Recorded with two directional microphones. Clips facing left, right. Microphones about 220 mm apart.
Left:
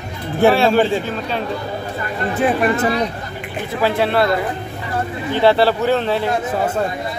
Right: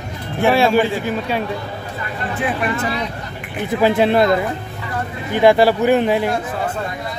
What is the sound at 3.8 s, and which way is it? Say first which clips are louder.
Speech: right 3 dB; 15° right (ahead or behind).